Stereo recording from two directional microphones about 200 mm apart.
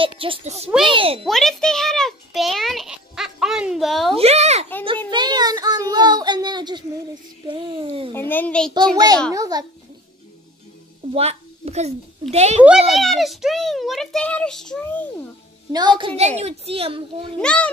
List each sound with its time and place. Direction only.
0.0 s a child's voice: 25° right (ahead or behind)
1.2 s a sound: centre (ahead or behind)
4.2 s a sound: 35° right (ahead or behind)
5.1 s child singing: 20° right (ahead or behind)
7.4 s a sound: 25° right (ahead or behind)
8.1 s a child's voice: 10° left (ahead or behind)
8.9 s a child's voice: 20° right (ahead or behind)
11.1 s a child's voice: 30° right (ahead or behind)
12.9 s a child's voice: centre (ahead or behind)
15.7 s a child's voice: 20° right (ahead or behind)
17.4 s a child's voice: 5° left (ahead or behind)